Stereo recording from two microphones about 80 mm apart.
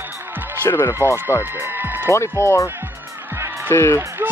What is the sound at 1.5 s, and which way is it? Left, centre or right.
Speech, right.